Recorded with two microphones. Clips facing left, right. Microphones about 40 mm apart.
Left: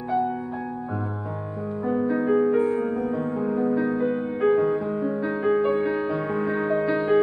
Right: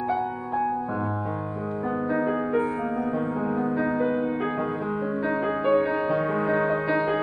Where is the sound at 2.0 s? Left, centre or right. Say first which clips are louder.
Left 5 dB; centre.